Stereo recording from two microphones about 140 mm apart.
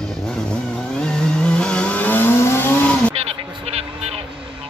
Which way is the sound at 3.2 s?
45° right (ahead or behind).